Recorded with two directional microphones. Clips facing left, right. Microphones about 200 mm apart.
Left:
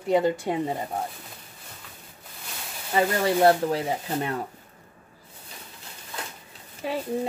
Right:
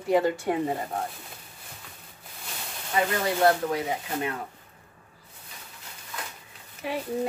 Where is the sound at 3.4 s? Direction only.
30° left (ahead or behind).